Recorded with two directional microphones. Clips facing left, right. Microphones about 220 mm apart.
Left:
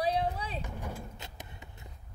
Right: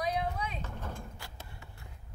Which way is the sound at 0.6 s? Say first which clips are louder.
Left 2 dB; 15° left (ahead or behind).